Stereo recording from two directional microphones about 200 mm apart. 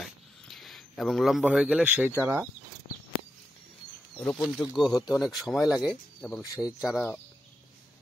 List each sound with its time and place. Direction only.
0.0 s a sound: centre (ahead or behind)
2.1 s speech: 10° right (ahead or behind)
4.2 s speech: 5° left (ahead or behind)
6.4 s speech: 15° left (ahead or behind)
6.8 s speech: centre (ahead or behind)